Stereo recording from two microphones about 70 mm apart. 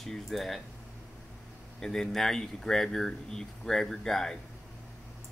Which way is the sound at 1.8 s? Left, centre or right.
Centre.